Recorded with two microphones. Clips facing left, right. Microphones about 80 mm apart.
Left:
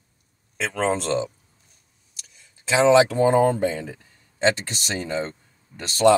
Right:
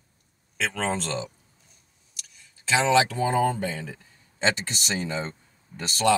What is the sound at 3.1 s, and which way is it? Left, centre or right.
Speech, left.